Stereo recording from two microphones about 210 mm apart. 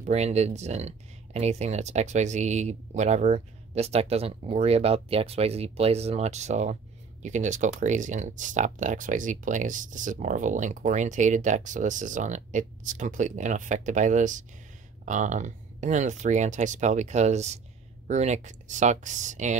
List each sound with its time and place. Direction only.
0.0 s speech: 30° right (ahead or behind)